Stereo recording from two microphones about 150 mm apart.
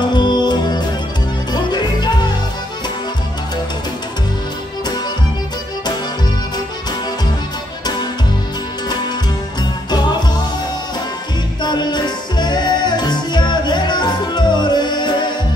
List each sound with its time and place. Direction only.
0.1 s music: 30° left (ahead or behind)
11.6 s music: 30° left (ahead or behind)